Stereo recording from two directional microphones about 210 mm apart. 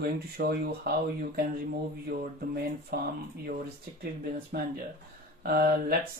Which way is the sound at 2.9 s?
45° right (ahead or behind).